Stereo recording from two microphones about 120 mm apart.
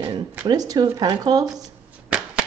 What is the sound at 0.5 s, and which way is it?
Speech, 35° right (ahead or behind).